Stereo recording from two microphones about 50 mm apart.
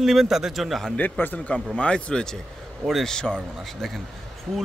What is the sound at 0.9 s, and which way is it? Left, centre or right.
Speech, left.